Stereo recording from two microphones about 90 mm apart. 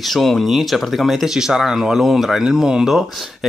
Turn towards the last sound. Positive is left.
turn(degrees=0)  # may be behind; listen again after turning